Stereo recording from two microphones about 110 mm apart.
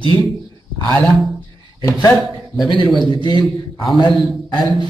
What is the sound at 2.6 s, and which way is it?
A man's voice, 45° left (ahead or behind).